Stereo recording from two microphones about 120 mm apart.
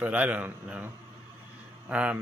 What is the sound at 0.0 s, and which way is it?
Speech, 15° right (ahead or behind).